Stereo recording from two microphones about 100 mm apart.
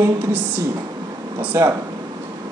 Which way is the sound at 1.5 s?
25° right (ahead or behind).